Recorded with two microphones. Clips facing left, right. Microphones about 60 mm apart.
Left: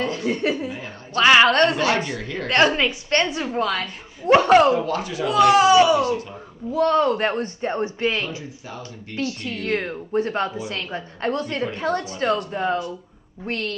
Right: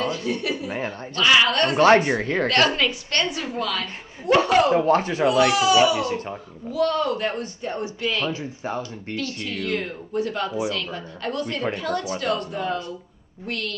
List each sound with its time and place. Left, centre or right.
0.0 s a woman's voice: left
0.7 s a woman's voice: right
1.1 s speech: left
2.0 s speech: right
2.4 s a woman's voice: left
4.7 s speech: right
5.5 s speech: left
8.3 s speech: right
9.1 s speech: left